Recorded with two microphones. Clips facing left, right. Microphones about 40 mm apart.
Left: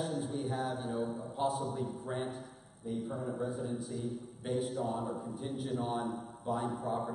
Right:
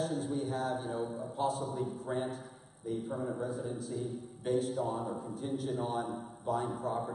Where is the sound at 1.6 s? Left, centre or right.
Centre.